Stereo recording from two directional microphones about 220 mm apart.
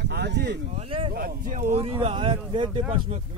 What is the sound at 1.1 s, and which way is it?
Speech, 40° right (ahead or behind).